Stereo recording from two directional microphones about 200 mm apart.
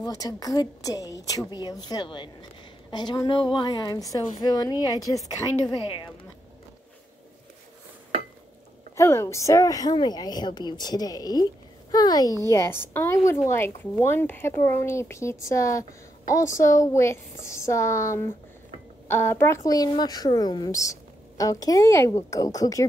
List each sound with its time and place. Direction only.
0.0 s a woman's voice: 20° left (ahead or behind)
8.9 s a woman's voice: 15° left (ahead or behind)